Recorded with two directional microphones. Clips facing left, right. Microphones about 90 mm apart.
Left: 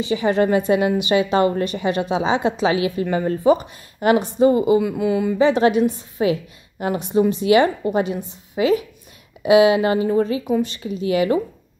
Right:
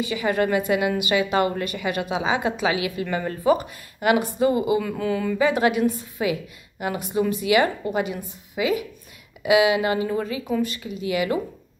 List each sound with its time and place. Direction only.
0.0 s a woman's voice: 30° left (ahead or behind)
4.8 s speech: 15° left (ahead or behind)
5.4 s a woman's voice: 30° left (ahead or behind)